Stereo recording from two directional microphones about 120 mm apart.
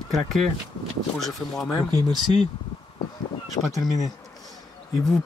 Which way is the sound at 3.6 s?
55° left (ahead or behind).